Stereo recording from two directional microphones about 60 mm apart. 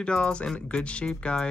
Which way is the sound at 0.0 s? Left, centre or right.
Centre.